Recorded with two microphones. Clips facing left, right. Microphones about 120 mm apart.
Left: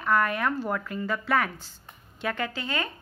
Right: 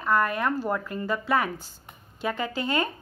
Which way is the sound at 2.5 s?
45° right (ahead or behind).